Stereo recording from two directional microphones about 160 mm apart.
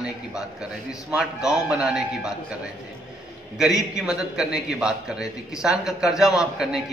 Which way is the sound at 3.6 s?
5° right (ahead or behind).